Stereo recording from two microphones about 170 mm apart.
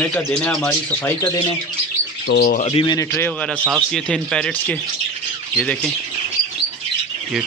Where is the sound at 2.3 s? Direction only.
70° left (ahead or behind).